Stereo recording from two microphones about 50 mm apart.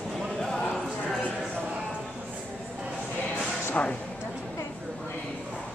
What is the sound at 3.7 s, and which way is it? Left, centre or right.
Music, left.